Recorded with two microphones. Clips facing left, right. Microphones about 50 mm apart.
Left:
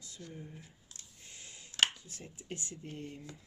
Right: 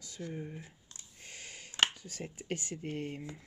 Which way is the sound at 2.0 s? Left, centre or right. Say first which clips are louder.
Right 7 dB; right.